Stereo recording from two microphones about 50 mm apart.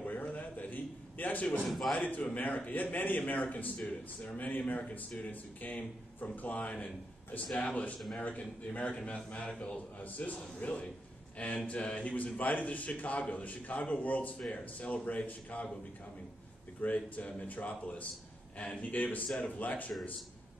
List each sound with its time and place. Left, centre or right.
0.0 s a sound: left
1.6 s a man's voice: centre
1.9 s a man's voice: left
16.8 s a man's voice: left
19.2 s speech: left
19.6 s a man's voice: left